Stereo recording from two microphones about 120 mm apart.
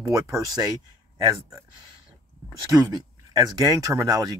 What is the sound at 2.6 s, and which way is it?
Speech, 30° right (ahead or behind).